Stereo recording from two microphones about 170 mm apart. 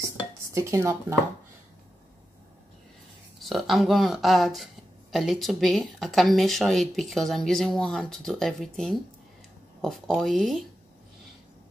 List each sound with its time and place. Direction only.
0.6 s speech: 15° right (ahead or behind)
3.3 s speech: centre (ahead or behind)